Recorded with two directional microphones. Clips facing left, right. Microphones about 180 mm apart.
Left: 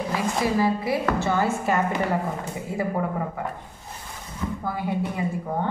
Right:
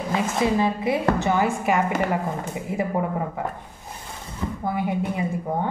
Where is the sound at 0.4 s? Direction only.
20° right (ahead or behind).